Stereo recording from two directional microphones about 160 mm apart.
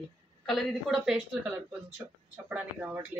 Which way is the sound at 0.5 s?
Centre (ahead or behind).